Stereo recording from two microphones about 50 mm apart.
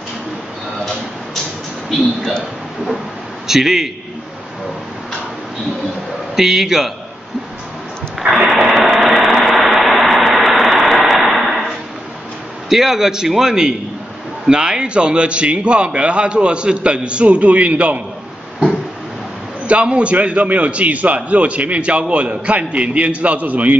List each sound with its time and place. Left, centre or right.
3.4 s a man's voice: centre
6.3 s a man's voice: centre
8.3 s a sound: centre
12.6 s a man's voice: centre; by 18.0 s right
19.6 s a man's voice: right